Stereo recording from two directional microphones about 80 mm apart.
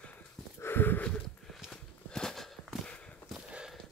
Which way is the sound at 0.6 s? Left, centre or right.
Left.